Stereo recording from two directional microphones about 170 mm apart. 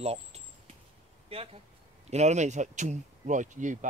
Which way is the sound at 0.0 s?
35° right (ahead or behind).